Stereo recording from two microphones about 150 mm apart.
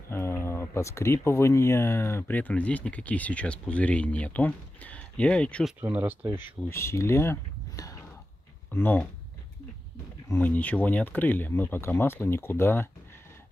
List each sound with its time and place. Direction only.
0.1 s speech: 15° left (ahead or behind)
5.8 s speech: 15° right (ahead or behind)
6.7 s speech: 20° left (ahead or behind)
8.7 s speech: 10° left (ahead or behind)
10.3 s speech: 10° left (ahead or behind)